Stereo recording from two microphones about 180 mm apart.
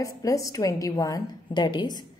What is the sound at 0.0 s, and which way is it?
A woman's voice, 20° left (ahead or behind).